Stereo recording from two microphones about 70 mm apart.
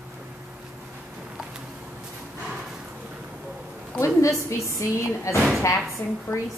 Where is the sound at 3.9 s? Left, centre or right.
Left.